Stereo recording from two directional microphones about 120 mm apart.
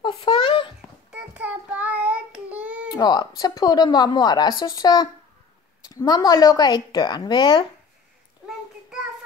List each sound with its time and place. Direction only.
0.0 s a sound: 50° left (ahead or behind)
1.1 s child singing: 10° right (ahead or behind)
2.9 s a woman's voice: 35° left (ahead or behind)